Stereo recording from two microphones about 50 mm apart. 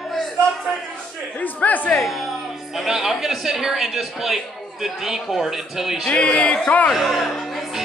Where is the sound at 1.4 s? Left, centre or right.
Left.